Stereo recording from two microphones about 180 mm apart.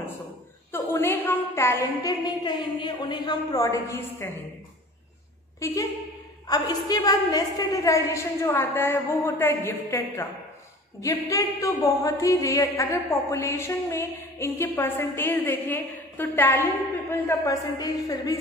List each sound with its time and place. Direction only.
0.7 s a woman's voice: 10° left (ahead or behind)
5.6 s a woman's voice: 20° left (ahead or behind)